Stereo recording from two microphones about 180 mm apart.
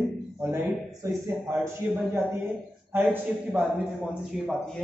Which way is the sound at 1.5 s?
5° right (ahead or behind).